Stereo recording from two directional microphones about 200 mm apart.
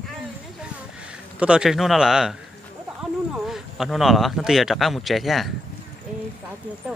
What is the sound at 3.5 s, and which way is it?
Speech, centre (ahead or behind).